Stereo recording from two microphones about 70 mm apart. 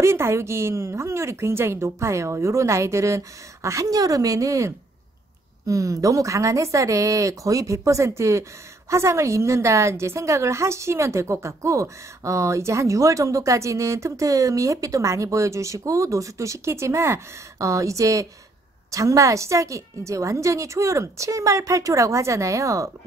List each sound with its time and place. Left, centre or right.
0.0 s a woman's voice: right